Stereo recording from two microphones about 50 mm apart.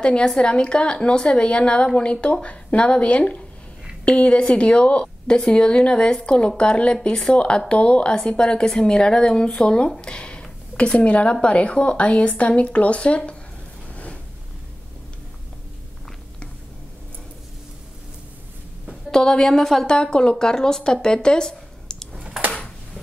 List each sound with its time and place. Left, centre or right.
0.0 s speech: centre
19.0 s a woman's voice: centre